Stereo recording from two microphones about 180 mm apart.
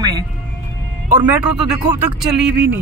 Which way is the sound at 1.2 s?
5° right (ahead or behind).